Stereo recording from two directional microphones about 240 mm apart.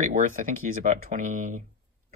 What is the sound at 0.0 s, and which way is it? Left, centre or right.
Speech, right.